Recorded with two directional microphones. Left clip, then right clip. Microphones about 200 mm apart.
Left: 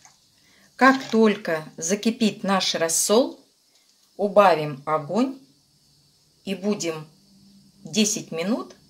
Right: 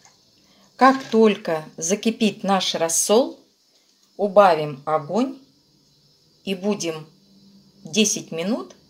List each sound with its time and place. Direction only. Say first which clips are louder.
0.7 s speech: right 2 dB; 5° right (ahead or behind)
6.4 s speech: right 2 dB; 5° right (ahead or behind)